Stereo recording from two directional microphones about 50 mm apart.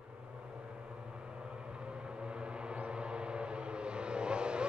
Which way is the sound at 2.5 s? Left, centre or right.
Right.